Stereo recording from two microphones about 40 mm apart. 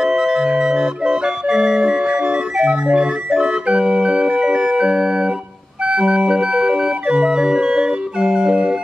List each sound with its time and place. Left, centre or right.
0.0 s organ: centre